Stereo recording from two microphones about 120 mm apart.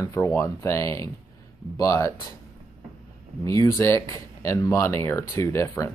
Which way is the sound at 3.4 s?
25° left (ahead or behind).